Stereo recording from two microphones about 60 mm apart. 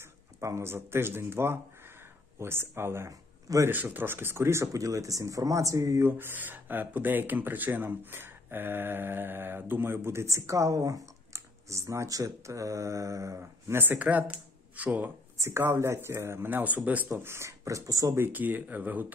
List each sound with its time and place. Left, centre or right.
0.0 s speech: right
3.1 s a sound: right
3.7 s speech: right
4.7 s speech: right
6.0 s speech: right
10.3 s speech: right
13.4 s speech: right
14.0 s speech: right
15.3 s a sound: right
15.8 s speech: right
16.4 s speech: right
17.2 s speech: right
17.5 s speech: right
18.1 s speech: right